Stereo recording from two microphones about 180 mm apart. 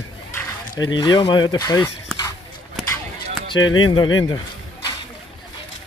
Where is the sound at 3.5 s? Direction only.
90° left.